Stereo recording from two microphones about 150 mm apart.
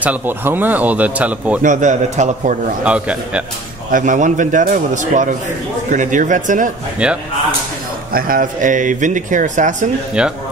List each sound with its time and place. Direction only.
0.0 s speech: 10° right (ahead or behind)
1.6 s speech: 55° right (ahead or behind)
2.8 s speech: 10° right (ahead or behind)
3.9 s speech: 55° right (ahead or behind)
7.0 s speech: 10° right (ahead or behind)
8.1 s speech: 70° right (ahead or behind); by 9.8 s 55° right (ahead or behind)
10.2 s speech: 5° right (ahead or behind)